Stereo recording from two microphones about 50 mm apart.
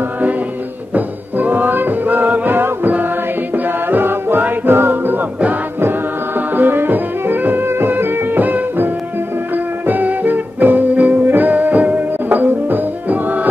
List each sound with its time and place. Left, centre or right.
0.9 s music: right